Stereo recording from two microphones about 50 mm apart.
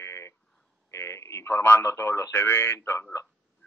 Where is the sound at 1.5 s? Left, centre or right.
Left.